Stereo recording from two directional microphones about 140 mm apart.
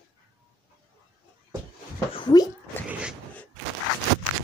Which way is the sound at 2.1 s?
35° left (ahead or behind).